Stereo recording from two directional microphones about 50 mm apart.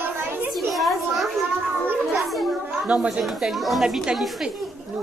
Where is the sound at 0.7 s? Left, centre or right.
Centre.